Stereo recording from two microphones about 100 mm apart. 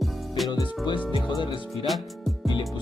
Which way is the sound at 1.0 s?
50° left (ahead or behind).